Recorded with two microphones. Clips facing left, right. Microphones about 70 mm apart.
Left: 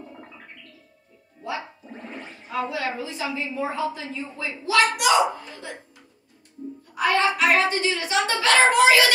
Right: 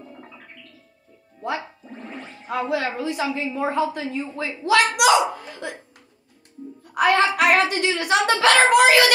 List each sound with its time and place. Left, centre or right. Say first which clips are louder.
2.4 s a woman's voice: right 3 dB; right
6.9 s a woman's voice: right 3 dB; right